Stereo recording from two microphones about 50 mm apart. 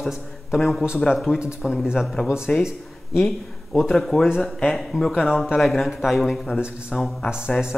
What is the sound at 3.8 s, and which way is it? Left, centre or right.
Speech, centre.